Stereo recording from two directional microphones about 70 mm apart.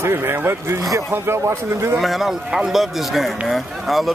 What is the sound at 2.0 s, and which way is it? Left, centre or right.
Speech, centre.